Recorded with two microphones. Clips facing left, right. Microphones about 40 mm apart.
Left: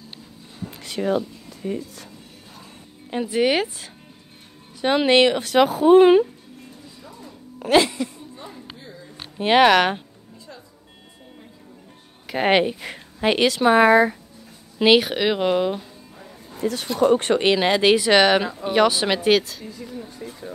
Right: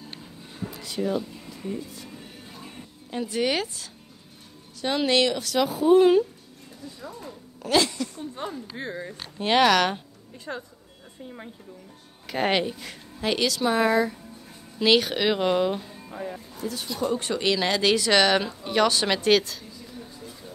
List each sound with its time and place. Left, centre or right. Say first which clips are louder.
0.7 s speech: left 4 dB; left
3.1 s a woman's voice: left 5 dB; left
5.6 s speech: left 5 dB; left
7.5 s music: left 5 dB; left
8.7 s speech: right 8 dB; right
9.4 s speech: left 5 dB; left
10.5 s a sound: right 9 dB; right
12.4 s a woman's voice: left 7 dB; left
14.8 s speech: left 4 dB; centre
16.1 s music: right 9 dB; right
16.5 s speech: left 10 dB; left
17.4 s speech: left 5 dB; left; by 19.6 s centre